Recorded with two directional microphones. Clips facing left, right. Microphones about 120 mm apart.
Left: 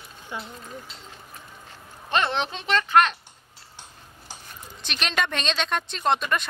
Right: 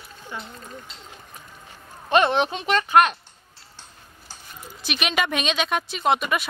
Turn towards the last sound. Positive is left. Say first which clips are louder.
# right 2 dB
turn(degrees=-10)  # may be behind; listen again after turning